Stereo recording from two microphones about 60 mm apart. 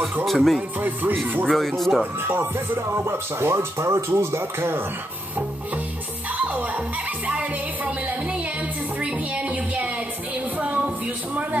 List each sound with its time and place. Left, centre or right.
0.2 s speech: centre
0.7 s speech: right
1.5 s speech: centre
2.2 s speech: right
6.3 s music: right
9.0 s music: right
10.6 s a sound: right